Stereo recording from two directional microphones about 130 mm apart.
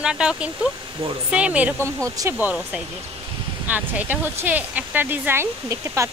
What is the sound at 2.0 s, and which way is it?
Speech, 25° right (ahead or behind).